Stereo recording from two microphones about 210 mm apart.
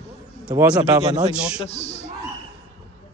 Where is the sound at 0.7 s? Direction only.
20° right (ahead or behind).